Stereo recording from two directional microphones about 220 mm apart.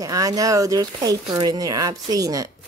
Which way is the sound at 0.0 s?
15° right (ahead or behind).